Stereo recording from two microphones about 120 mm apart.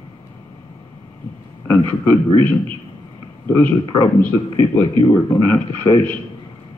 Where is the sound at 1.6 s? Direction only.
20° left (ahead or behind).